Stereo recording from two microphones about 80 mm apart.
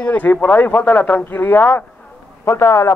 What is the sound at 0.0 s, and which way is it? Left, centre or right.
A man's voice, centre.